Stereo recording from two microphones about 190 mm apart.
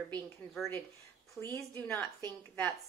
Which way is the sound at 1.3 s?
15° left (ahead or behind).